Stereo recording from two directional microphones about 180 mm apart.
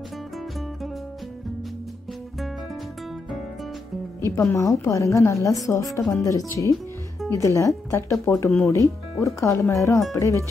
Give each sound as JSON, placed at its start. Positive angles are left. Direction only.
{"t": 4.2, "sound": "a woman's voice", "side_deg": 15}